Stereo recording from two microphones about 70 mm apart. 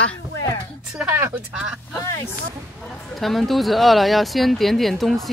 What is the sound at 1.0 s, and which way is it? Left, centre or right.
Speech, right.